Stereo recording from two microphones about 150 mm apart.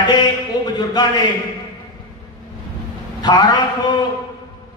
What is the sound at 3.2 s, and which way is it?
Speech, 30° left (ahead or behind).